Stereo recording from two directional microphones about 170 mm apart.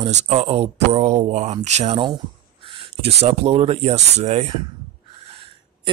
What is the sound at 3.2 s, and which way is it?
Speech, 35° right (ahead or behind).